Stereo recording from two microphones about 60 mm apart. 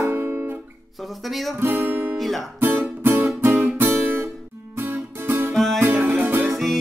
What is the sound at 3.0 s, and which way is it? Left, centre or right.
Music, right.